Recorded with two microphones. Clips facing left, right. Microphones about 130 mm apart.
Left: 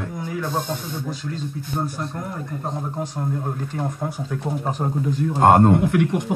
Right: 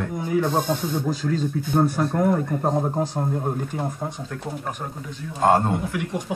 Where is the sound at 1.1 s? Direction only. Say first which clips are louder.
Right 6 dB; 40° right (ahead or behind).